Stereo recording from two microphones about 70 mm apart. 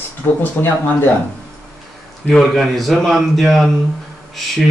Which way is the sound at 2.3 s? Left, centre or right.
Centre.